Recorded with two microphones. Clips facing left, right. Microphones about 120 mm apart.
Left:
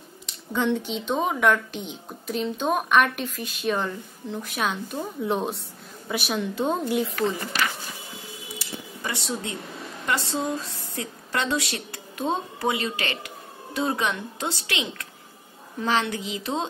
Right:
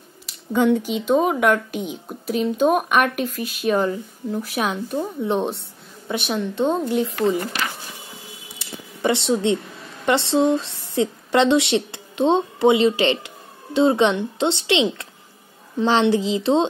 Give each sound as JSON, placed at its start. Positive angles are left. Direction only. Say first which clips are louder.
{"t": 0.3, "sound": "a woman's voice", "louder": "right 7 dB", "side_deg": -10}
{"t": 8.5, "sound": "a sound", "louder": "right 1 dB", "side_deg": -25}
{"t": 10.0, "sound": "a woman's voice", "louder": "right 9 dB", "side_deg": -25}